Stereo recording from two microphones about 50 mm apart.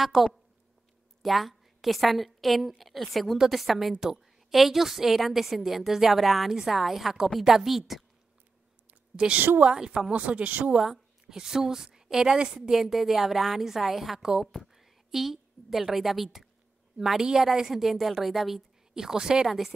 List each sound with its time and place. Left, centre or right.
0.1 s a woman's voice: centre
9.1 s a woman's voice: centre
10.7 s a woman's voice: centre